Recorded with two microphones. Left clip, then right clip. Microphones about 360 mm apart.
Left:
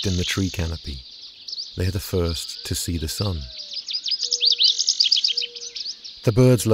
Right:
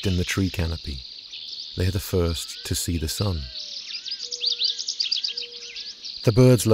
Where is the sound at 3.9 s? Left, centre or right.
Left.